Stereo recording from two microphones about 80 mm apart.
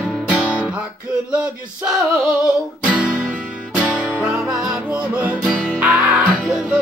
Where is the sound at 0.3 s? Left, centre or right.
Centre.